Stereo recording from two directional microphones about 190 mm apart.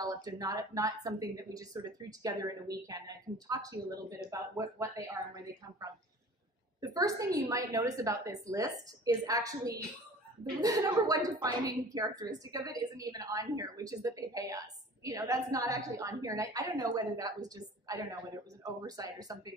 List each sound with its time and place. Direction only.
0.0 s a woman's voice: 20° right (ahead or behind)